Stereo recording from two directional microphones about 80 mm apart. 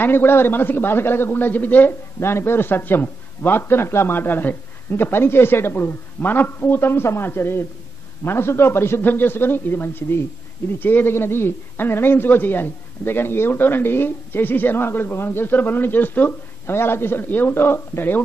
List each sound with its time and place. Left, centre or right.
0.0 s speech: left